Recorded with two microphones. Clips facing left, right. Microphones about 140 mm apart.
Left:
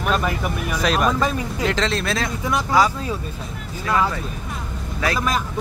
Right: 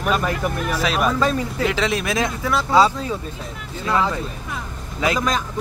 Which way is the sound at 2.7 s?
25° right (ahead or behind).